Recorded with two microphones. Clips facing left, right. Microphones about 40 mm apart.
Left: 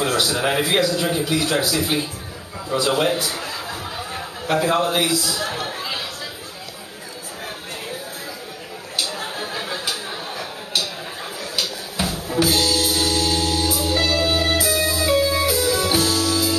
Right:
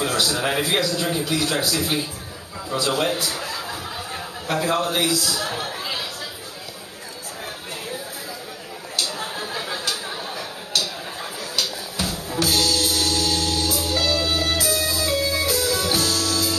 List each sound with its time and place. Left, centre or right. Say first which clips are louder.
0.0 s a man's voice: left 2 dB; centre
2.7 s chuckle: left 3 dB; centre
8.9 s a sound: left 1 dB; centre
11.5 s music: left 1 dB; centre